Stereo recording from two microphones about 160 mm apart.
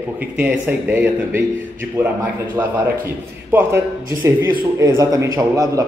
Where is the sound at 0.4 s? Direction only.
10° right (ahead or behind).